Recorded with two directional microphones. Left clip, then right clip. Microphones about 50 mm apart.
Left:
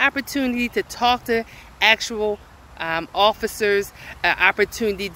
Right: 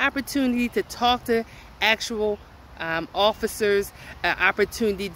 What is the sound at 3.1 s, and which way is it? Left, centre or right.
Speech, right.